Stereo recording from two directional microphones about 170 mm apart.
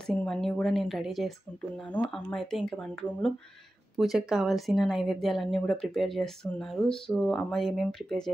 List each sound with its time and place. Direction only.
0.0 s speech: 5° left (ahead or behind)